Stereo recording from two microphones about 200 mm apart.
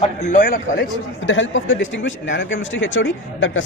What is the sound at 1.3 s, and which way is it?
Speech, 70° left (ahead or behind).